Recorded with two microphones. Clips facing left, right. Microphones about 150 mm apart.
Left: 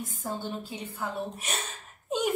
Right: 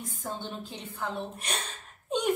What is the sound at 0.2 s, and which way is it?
A woman's voice, 5° left (ahead or behind).